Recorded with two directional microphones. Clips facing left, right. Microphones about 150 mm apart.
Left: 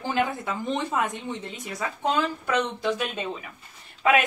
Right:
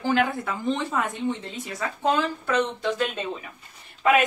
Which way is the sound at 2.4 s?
10° left (ahead or behind).